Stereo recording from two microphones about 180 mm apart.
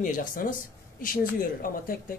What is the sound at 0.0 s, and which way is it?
Speech, 45° left (ahead or behind).